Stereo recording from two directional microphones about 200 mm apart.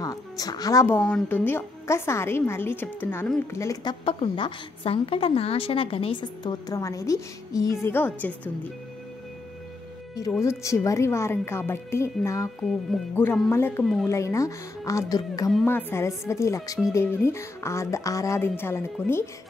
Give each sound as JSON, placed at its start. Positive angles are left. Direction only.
{"t": 0.0, "sound": "a woman's voice", "side_deg": 15}
{"t": 4.0, "sound": "a woman's voice", "side_deg": 25}
{"t": 10.4, "sound": "a woman's voice", "side_deg": 15}